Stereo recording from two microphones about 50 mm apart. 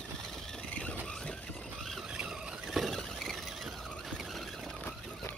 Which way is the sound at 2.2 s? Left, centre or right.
Centre.